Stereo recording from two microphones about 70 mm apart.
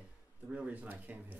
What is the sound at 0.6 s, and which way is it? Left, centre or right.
Speech, right.